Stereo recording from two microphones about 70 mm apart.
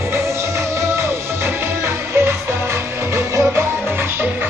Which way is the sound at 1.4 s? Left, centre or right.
Right.